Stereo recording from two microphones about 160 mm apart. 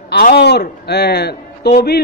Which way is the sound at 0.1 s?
90° left.